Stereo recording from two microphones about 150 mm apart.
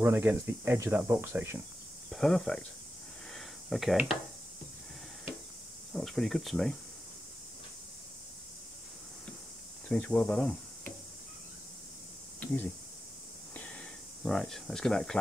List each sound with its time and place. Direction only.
0.0 s speech: 15° right (ahead or behind)
2.0 s speech: centre (ahead or behind)
3.3 s a sound: centre (ahead or behind)
3.9 s speech: 10° right (ahead or behind)
5.9 s speech: centre (ahead or behind)
9.8 s speech: 5° left (ahead or behind)
13.6 s a sound: 5° left (ahead or behind)